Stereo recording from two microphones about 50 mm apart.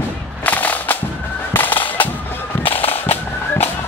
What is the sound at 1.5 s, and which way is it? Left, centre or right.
Fowl, left.